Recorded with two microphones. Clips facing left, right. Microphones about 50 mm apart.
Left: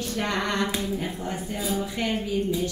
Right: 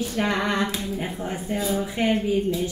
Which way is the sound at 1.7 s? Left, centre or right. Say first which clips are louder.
Right 4 dB; right.